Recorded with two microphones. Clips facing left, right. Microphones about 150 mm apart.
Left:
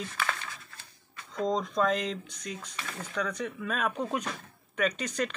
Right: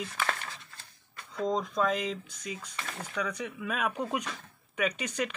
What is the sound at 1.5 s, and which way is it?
Speech, 5° right (ahead or behind).